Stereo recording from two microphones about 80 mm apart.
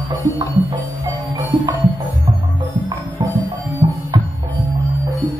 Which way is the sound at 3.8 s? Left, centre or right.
Right.